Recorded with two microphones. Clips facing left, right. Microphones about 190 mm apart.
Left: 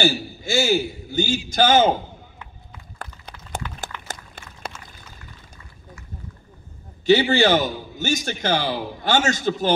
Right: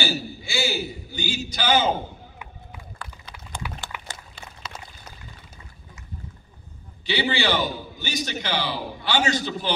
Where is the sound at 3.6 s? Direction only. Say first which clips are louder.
Right 1 dB; 10° right (ahead or behind).